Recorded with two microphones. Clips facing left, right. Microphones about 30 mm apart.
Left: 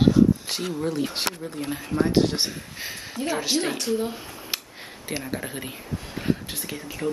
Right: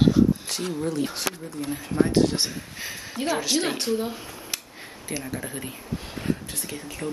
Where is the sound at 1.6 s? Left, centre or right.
Left.